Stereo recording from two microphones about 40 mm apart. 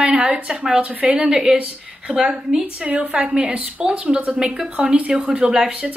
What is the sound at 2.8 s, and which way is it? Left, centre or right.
A woman's voice, right.